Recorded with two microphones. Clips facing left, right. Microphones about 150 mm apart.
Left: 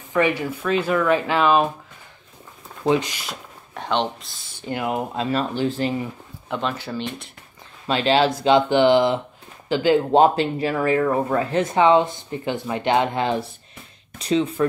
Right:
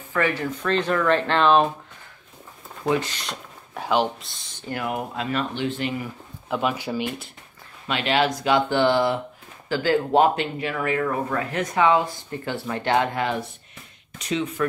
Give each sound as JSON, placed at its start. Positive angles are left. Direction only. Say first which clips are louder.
{"t": 0.1, "sound": "speech", "louder": "left 3 dB", "side_deg": 15}
{"t": 2.8, "sound": "speech", "louder": "left 3 dB", "side_deg": 25}
{"t": 3.1, "sound": "speech", "louder": "even", "side_deg": 5}
{"t": 4.6, "sound": "speech", "louder": "left 3 dB", "side_deg": 20}
{"t": 6.5, "sound": "speech", "louder": "right 1 dB", "side_deg": -10}
{"t": 7.8, "sound": "speech", "louder": "left 4 dB", "side_deg": 30}